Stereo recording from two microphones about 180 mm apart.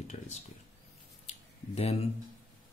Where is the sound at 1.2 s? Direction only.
35° left (ahead or behind).